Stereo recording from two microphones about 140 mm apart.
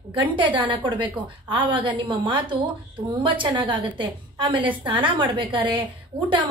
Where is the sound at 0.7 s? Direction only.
35° right (ahead or behind).